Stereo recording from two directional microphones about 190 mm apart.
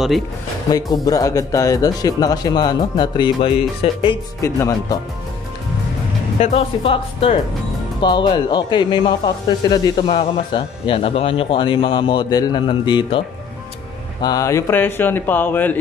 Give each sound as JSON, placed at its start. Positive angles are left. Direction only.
{"t": 0.7, "sound": "speech", "side_deg": 20}
{"t": 4.4, "sound": "speech", "side_deg": 15}
{"t": 6.4, "sound": "speech", "side_deg": 30}
{"t": 14.2, "sound": "speech", "side_deg": 20}